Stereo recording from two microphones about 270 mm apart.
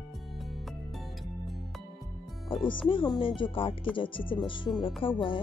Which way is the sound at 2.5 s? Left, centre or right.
Centre.